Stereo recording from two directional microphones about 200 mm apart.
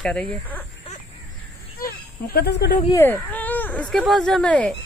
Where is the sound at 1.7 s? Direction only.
50° left (ahead or behind).